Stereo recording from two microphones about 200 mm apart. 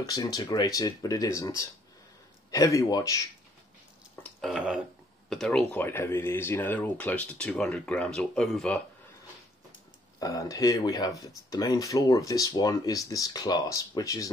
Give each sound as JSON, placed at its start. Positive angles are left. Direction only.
{"t": 0.0, "sound": "speech", "side_deg": 20}
{"t": 4.2, "sound": "speech", "side_deg": 0}
{"t": 10.1, "sound": "speech", "side_deg": 20}